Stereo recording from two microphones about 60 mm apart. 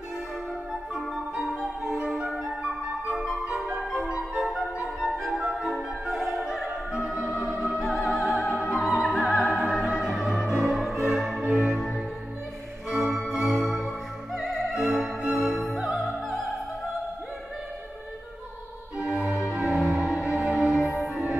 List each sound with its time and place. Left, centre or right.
1.4 s music: centre
4.1 s music: centre
6.0 s music: centre
7.2 s opera: centre
9.7 s music: centre
15.4 s opera: centre
19.0 s music: centre